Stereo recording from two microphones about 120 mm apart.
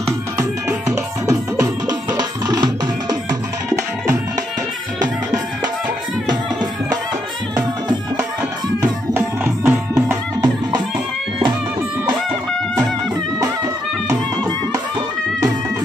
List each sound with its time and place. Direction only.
1.2 s music: 25° right (ahead or behind)
6.2 s music: 35° right (ahead or behind)
8.8 s music: 15° right (ahead or behind)
14.0 s music: 25° right (ahead or behind)